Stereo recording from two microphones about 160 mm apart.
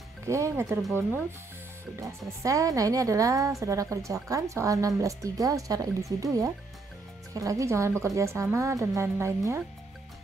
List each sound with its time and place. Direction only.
0.3 s speech: 15° right (ahead or behind)
2.0 s speech: 20° right (ahead or behind)